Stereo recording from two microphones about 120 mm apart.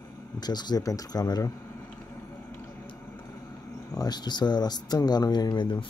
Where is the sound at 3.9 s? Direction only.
35° left (ahead or behind).